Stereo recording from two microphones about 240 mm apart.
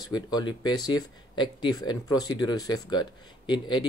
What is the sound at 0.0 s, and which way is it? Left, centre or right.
Speech, centre.